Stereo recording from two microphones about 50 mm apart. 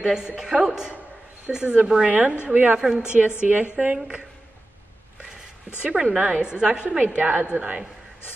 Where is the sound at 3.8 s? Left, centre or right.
Right.